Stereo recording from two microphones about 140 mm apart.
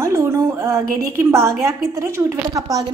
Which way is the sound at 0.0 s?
20° right (ahead or behind).